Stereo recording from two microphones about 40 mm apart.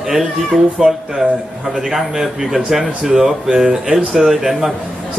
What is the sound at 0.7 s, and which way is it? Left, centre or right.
A man's voice, centre.